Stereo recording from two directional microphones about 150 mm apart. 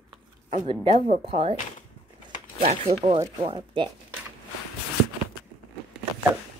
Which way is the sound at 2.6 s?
45° right (ahead or behind).